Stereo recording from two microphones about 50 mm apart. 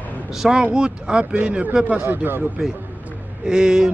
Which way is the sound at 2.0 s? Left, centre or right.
Right.